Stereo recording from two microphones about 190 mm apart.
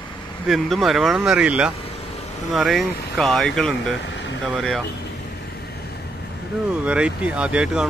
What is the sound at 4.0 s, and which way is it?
Air conditioning, 70° left (ahead or behind).